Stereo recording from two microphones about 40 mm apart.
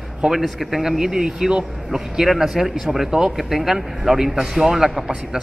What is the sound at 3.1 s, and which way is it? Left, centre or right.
A man's voice, centre.